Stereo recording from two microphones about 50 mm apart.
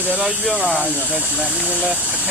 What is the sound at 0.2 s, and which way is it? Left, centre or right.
Speech, centre.